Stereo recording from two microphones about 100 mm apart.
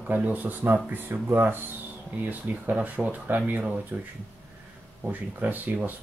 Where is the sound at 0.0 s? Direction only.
15° right (ahead or behind).